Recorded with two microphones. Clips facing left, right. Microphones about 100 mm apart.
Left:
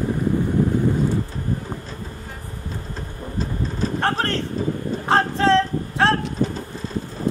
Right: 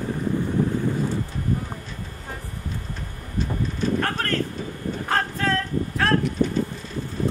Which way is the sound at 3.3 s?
30° left (ahead or behind).